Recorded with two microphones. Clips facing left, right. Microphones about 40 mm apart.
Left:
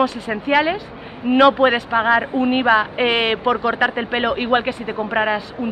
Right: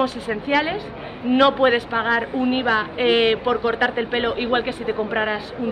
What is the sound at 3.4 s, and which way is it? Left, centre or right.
Speech, centre.